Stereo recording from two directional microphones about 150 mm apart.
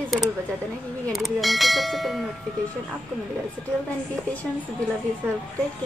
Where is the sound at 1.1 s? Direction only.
Centre (ahead or behind).